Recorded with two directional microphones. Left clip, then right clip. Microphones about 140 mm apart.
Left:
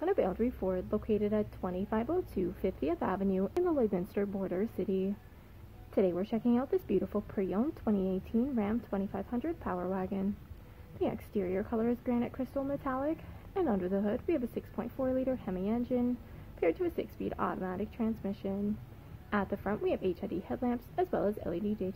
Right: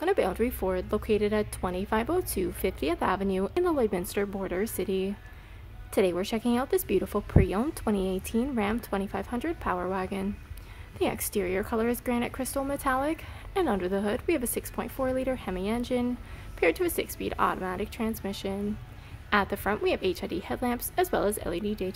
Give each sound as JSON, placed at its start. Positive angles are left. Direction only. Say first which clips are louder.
{"t": 0.0, "sound": "a woman's voice", "louder": "right 5 dB", "side_deg": -15}
{"t": 2.3, "sound": "a woman's voice", "louder": "right 4 dB", "side_deg": -15}